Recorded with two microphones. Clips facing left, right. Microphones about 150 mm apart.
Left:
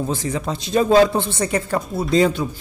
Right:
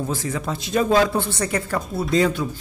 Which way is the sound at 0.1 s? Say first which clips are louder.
Left 2 dB; 25° left (ahead or behind).